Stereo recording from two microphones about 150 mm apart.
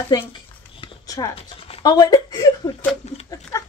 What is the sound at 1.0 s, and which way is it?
Chopping, 25° left (ahead or behind).